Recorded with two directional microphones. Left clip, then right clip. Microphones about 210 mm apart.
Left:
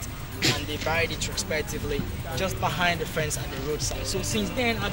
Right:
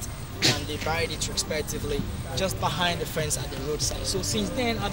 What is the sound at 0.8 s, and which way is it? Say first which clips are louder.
Speech: left 4 dB; 10° right (ahead or behind).